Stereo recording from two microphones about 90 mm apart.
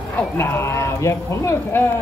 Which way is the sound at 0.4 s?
30° left (ahead or behind).